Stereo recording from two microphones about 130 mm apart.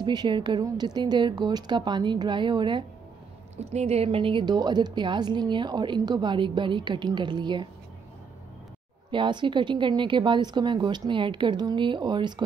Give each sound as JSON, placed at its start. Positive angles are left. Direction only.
{"t": 0.0, "sound": "a woman's voice", "side_deg": -35}
{"t": 3.5, "sound": "a woman's voice", "side_deg": -55}
{"t": 9.1, "sound": "a woman's voice", "side_deg": -40}